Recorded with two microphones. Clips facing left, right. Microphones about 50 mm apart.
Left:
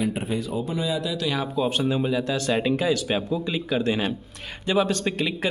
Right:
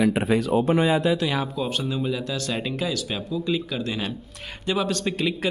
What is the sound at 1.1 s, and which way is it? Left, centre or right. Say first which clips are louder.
Speech: right 2 dB; centre.